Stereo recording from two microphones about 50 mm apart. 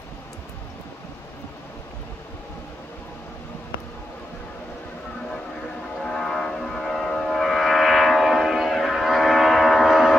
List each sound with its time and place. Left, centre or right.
5.9 s vehicle: centre
9.8 s train: centre